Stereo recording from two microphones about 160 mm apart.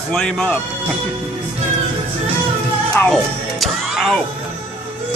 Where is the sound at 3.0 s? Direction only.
Centre (ahead or behind).